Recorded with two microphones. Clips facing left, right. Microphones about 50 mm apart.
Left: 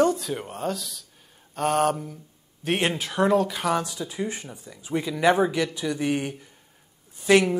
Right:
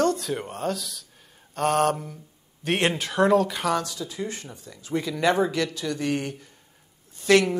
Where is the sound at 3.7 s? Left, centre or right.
Centre.